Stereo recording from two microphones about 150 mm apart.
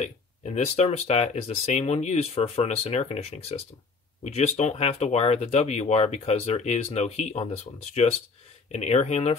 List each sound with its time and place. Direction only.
0.0 s speech: 45° left (ahead or behind)